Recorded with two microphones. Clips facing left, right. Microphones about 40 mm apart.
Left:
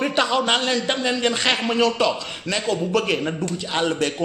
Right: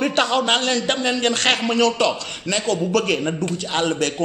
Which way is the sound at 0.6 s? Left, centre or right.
Centre.